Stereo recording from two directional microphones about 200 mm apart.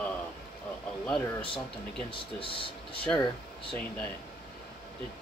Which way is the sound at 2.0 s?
25° left (ahead or behind).